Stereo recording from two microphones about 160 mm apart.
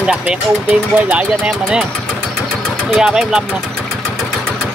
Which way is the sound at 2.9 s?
Centre (ahead or behind).